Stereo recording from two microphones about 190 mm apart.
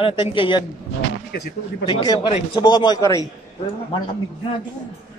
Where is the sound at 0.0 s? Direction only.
25° left (ahead or behind).